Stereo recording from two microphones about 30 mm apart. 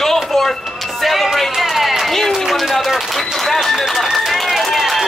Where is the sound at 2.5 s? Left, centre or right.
Centre.